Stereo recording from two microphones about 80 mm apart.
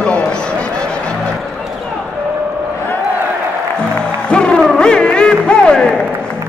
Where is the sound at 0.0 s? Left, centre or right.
Centre.